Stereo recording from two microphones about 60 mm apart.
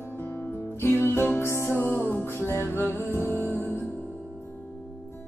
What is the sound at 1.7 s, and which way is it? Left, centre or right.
Music, left.